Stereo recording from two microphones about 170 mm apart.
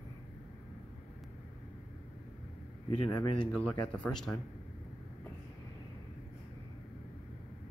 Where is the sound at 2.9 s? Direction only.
30° left (ahead or behind).